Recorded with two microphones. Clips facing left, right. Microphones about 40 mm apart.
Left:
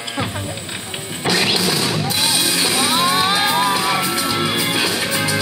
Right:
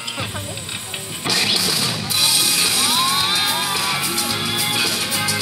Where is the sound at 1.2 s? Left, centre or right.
Left.